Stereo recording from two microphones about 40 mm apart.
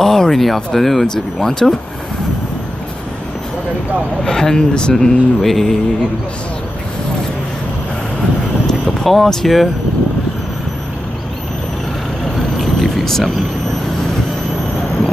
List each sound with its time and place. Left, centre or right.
0.0 s a sound: centre
0.7 s speech: centre
1.0 s speech: centre
4.2 s speech: centre
4.9 s speech: centre
9.0 s speech: centre
12.4 s vehicle: centre